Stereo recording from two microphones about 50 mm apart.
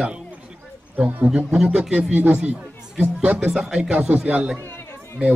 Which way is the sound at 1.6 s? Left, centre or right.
Centre.